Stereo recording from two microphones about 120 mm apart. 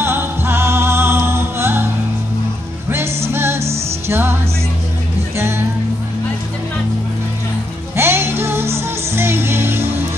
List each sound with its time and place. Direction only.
0.0 s music: 20° right (ahead or behind)
2.9 s music: 20° right (ahead or behind)
7.9 s music: 20° right (ahead or behind)